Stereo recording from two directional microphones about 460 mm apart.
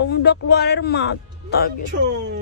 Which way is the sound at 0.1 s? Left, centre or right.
Left.